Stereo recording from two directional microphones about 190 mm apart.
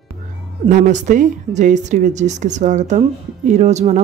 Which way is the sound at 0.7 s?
40° right (ahead or behind).